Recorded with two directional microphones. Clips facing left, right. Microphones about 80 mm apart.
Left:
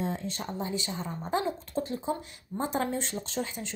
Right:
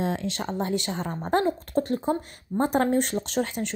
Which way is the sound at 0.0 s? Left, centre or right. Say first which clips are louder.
Right 5 dB; right.